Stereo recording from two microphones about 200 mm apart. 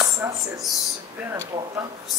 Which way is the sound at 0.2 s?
10° right (ahead or behind).